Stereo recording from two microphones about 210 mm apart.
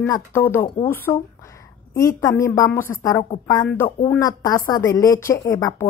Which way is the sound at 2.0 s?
15° left (ahead or behind).